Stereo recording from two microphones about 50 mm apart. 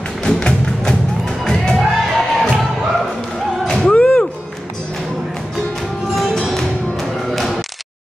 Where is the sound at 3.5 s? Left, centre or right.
Centre.